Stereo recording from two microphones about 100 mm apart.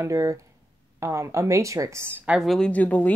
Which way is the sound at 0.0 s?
30° right (ahead or behind).